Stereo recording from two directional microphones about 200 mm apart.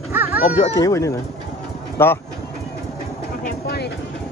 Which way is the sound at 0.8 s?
15° left (ahead or behind).